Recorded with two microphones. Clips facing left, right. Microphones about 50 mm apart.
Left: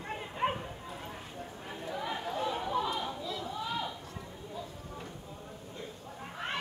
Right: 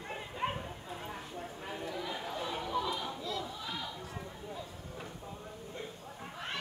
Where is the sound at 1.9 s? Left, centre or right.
Left.